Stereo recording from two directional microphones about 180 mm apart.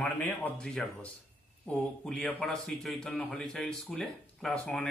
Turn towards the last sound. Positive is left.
turn(degrees=5)  # may be behind; listen again after turning